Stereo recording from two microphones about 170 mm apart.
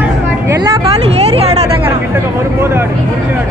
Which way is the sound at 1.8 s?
15° right (ahead or behind).